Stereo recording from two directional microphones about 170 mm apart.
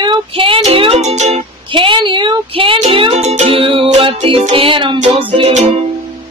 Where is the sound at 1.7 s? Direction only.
30° right (ahead or behind).